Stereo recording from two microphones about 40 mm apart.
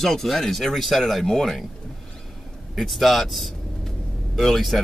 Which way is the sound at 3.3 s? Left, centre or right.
Centre.